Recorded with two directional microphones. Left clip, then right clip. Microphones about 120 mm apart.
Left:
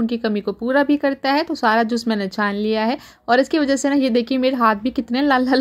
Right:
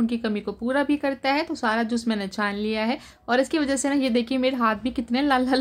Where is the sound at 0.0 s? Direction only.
40° left (ahead or behind).